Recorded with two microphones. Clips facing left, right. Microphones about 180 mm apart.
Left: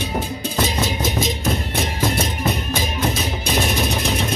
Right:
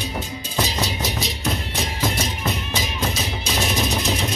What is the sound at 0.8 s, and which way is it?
Music, 50° left (ahead or behind).